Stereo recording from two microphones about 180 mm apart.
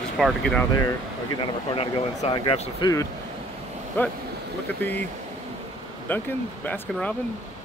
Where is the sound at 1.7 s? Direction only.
30° left (ahead or behind).